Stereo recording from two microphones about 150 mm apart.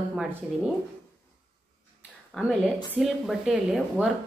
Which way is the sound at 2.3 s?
Centre (ahead or behind).